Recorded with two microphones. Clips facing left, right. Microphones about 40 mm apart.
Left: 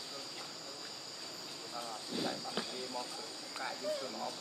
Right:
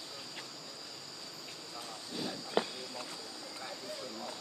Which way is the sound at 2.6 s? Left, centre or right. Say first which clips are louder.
Right 13 dB; right.